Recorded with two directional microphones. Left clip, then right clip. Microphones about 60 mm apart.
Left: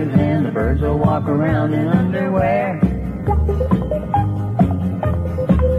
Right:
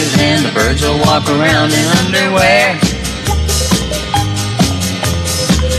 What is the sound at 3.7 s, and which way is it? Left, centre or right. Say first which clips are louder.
Music: right 4 dB; left.